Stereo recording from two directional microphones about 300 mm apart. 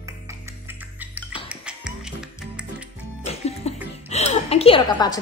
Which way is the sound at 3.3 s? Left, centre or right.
Left.